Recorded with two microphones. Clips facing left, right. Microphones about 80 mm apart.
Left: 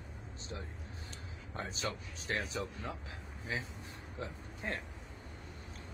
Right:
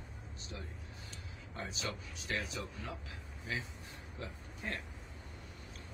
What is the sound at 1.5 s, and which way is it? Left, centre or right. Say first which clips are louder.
A man's voice: left 2 dB; left.